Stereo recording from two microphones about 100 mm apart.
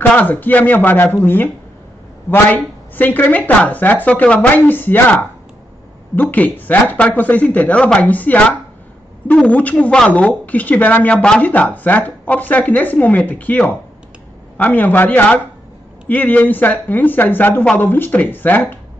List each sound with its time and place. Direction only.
0.1 s speech: 15° left (ahead or behind)
6.1 s speech: 15° left (ahead or behind)